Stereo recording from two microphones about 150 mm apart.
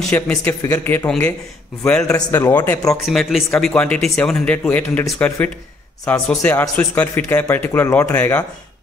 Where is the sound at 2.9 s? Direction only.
Centre (ahead or behind).